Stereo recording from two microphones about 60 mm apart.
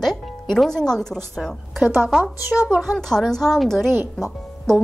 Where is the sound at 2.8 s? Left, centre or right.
Centre.